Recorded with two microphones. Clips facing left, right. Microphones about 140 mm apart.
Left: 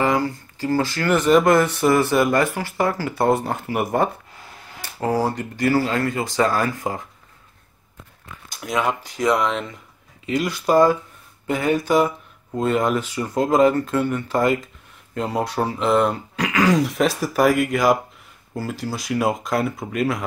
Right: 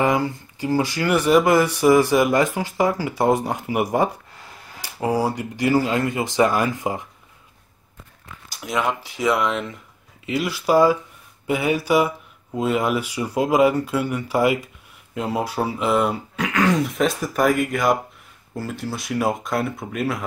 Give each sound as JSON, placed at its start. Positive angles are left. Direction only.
{"t": 0.0, "sound": "speech", "side_deg": -20}
{"t": 8.5, "sound": "speech", "side_deg": 0}